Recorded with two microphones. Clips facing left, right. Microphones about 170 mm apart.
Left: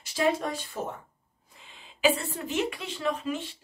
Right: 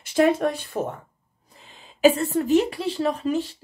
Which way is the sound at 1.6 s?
40° right (ahead or behind).